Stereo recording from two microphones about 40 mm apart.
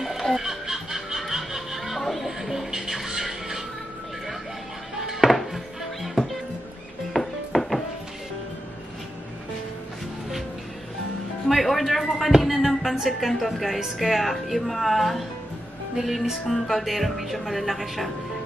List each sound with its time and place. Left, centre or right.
0.0 s music: centre
5.3 s music: centre
7.2 s music: centre
11.4 s a sound: centre
12.3 s music: centre
13.2 s speech: centre